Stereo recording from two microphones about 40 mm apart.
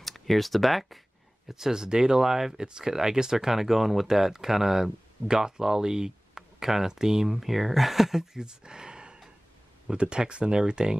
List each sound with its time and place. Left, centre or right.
0.0 s speech: centre
1.5 s speech: centre